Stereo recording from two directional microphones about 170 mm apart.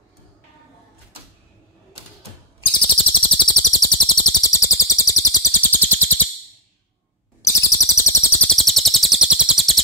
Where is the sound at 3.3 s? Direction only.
25° left (ahead or behind).